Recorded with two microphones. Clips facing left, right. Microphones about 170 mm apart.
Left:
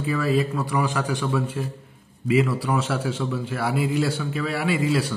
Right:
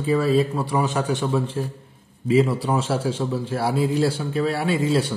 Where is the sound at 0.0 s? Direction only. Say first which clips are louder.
Right 3 dB; 30° right (ahead or behind).